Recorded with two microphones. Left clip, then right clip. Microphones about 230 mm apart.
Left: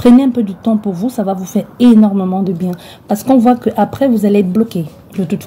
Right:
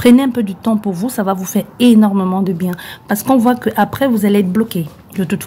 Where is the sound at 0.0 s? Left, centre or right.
Right.